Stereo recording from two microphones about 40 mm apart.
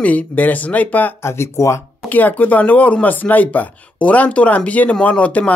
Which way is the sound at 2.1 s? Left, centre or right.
Left.